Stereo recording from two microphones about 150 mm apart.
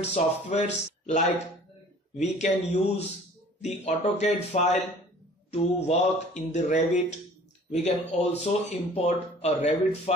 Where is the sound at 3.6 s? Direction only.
50° left (ahead or behind).